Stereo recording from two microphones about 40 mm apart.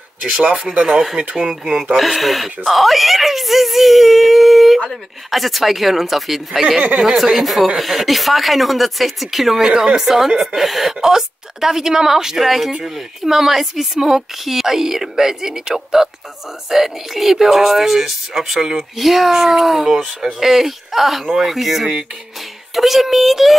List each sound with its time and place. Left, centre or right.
0.7 s speech: right
1.4 s speech: centre
2.0 s a woman's voice: centre
9.7 s a woman's voice: centre
12.4 s a woman's voice: centre
18.6 s a woman's voice: centre
18.9 s speech: centre
20.3 s a woman's voice: centre